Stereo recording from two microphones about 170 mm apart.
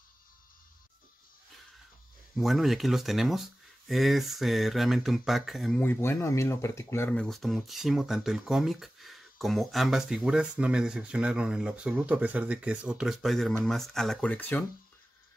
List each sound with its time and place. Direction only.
2.3 s speech: centre (ahead or behind)
5.8 s speech: 10° left (ahead or behind)
7.2 s speech: centre (ahead or behind)